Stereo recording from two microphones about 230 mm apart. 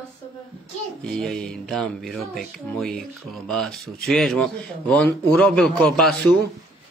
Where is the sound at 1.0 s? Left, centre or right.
Centre.